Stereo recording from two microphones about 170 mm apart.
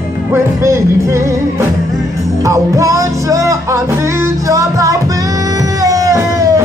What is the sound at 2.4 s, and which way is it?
Music, 20° right (ahead or behind).